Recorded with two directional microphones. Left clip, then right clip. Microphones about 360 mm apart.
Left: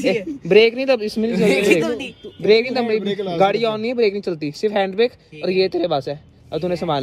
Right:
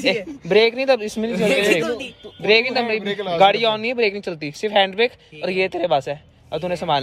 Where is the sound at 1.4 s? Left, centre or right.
Centre.